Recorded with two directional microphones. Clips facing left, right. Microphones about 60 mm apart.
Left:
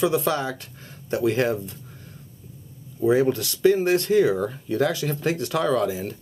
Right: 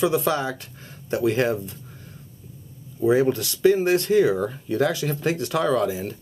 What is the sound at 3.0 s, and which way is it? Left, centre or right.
Speech, right.